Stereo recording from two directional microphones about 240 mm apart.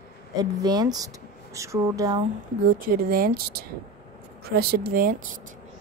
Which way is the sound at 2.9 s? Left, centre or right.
Right.